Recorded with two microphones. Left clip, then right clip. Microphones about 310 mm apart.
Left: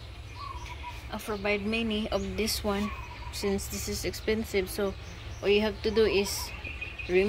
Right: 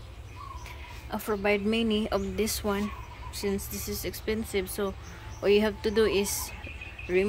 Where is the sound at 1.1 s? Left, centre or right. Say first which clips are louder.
Right 3 dB; centre.